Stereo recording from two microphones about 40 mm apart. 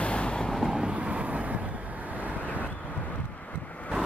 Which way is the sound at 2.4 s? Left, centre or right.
Left.